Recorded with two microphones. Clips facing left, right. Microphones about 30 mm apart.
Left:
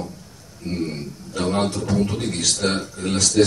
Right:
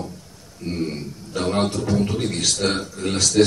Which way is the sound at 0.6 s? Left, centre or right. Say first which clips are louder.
Even; centre.